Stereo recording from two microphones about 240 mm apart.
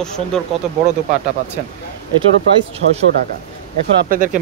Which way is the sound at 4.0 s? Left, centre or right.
Right.